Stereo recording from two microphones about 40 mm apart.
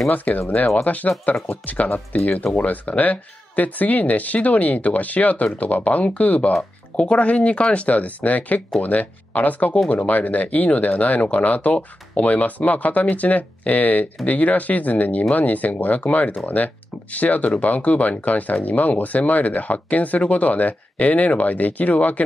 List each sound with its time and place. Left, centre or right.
0.1 s speech: left